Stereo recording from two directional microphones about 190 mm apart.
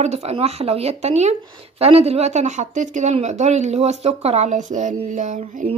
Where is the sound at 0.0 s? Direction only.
35° right (ahead or behind).